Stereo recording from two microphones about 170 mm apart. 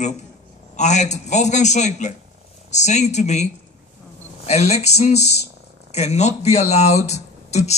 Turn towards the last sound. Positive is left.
turn(degrees=40)  # may be behind; listen again after turning